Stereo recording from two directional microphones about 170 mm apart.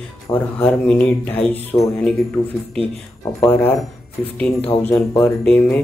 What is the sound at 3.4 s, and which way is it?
Speech, 10° left (ahead or behind).